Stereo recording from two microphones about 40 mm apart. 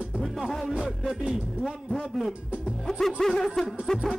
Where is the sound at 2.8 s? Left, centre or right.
Centre.